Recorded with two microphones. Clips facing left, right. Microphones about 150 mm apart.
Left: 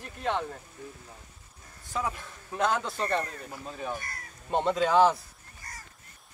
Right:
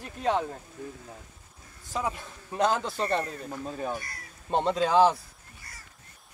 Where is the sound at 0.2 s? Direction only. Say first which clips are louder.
Right 3 dB; 5° right (ahead or behind).